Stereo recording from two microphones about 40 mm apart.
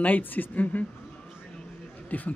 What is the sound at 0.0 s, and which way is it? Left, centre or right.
Speech, left.